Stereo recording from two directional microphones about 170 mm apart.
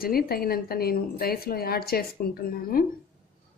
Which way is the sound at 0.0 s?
60° left (ahead or behind).